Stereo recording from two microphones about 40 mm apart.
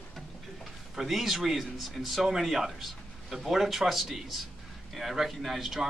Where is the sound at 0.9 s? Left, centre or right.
Centre.